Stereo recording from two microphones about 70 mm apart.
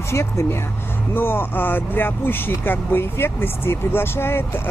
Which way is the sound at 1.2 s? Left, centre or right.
Left.